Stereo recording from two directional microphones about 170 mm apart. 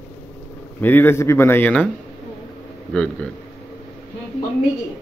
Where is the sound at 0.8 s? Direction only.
10° left (ahead or behind).